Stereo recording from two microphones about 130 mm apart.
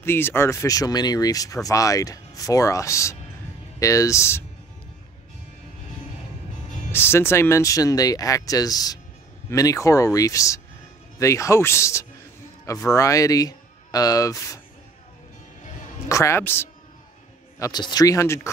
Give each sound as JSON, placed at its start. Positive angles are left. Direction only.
{"t": 0.0, "sound": "speech", "side_deg": 15}
{"t": 6.9, "sound": "speech", "side_deg": 20}
{"t": 16.1, "sound": "speech", "side_deg": 20}
{"t": 17.6, "sound": "speech", "side_deg": 30}